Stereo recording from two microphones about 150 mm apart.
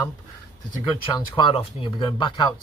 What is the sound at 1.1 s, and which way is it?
Speech, 35° left (ahead or behind).